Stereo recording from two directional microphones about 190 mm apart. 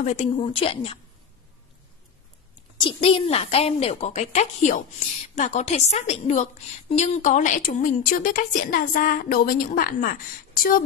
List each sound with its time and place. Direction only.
0.0 s a woman's voice: 35° left (ahead or behind)
2.8 s a woman's voice: 30° left (ahead or behind); by 10.1 s 45° left (ahead or behind)